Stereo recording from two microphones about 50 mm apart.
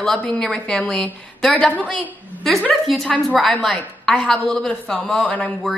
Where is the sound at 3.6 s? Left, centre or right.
Centre; by 5.7 s left.